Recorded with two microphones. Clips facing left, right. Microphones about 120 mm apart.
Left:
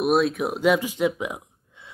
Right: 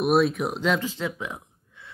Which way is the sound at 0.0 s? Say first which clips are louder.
Even; centre (ahead or behind).